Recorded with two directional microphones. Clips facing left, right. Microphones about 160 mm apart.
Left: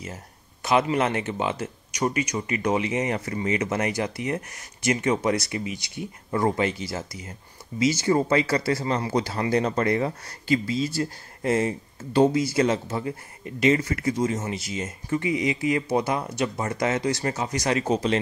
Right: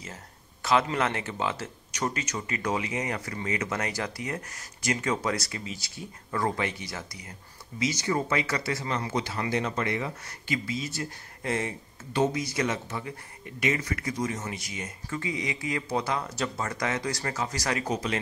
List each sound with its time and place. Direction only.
0.0 s speech: 20° left (ahead or behind)